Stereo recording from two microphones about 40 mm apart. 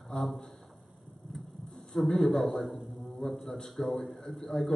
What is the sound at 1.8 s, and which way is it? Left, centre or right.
A man's voice, centre.